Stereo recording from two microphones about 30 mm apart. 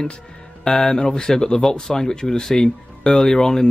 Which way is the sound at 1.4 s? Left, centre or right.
Left.